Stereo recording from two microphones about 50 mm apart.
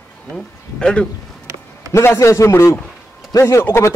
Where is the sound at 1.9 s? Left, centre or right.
Left.